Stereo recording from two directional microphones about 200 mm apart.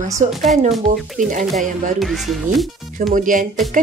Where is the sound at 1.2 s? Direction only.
40° right (ahead or behind).